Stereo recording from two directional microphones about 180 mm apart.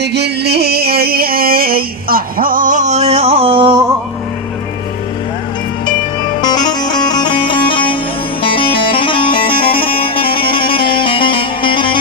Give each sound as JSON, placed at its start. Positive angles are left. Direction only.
{"t": 0.0, "sound": "music", "side_deg": -65}
{"t": 6.4, "sound": "music", "side_deg": 20}